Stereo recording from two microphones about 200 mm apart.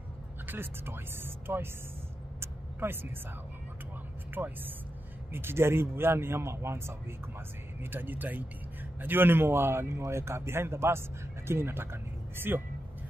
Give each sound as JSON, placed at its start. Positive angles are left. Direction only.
{"t": 0.5, "sound": "a man's voice", "side_deg": -10}
{"t": 2.4, "sound": "vehicle", "side_deg": -10}
{"t": 4.3, "sound": "a man's voice", "side_deg": -10}